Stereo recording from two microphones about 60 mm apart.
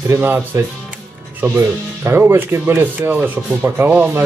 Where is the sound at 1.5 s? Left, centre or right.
Right.